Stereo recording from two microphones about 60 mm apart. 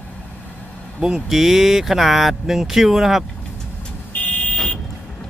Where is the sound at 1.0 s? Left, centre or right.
Centre.